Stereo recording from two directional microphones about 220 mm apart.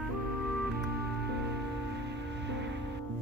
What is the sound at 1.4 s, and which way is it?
Music, 50° right (ahead or behind).